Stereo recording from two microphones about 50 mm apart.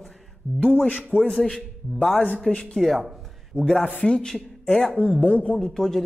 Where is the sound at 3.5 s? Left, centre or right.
Left.